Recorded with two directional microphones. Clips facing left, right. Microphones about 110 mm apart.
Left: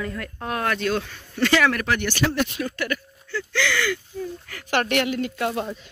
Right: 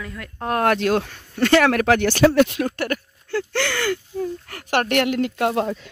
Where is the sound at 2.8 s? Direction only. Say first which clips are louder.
Right 3 dB; 55° right (ahead or behind).